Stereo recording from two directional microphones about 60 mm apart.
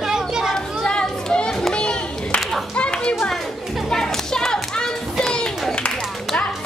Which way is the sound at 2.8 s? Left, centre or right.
Centre.